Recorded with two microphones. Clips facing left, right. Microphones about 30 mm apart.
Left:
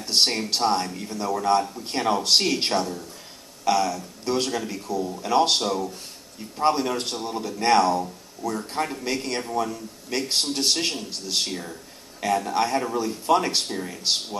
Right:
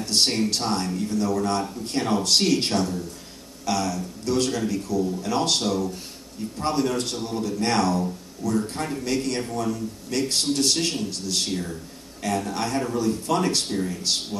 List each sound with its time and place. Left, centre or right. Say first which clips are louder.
0.0 s a man's voice: even; centre